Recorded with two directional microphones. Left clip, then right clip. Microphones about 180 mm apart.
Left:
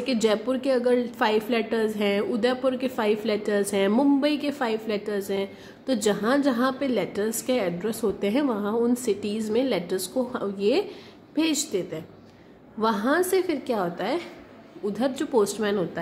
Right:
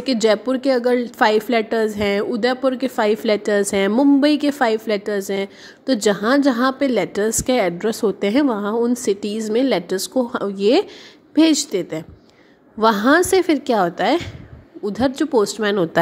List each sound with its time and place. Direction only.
0.0 s a woman's voice: 40° right (ahead or behind)